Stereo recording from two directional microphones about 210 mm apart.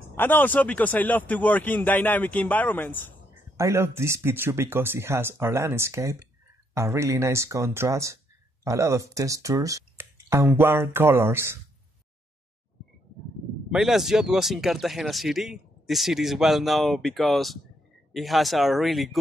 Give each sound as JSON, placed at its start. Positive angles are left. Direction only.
{"t": 0.1, "sound": "speech", "side_deg": 10}
{"t": 3.5, "sound": "speech", "side_deg": -15}
{"t": 13.7, "sound": "speech", "side_deg": 0}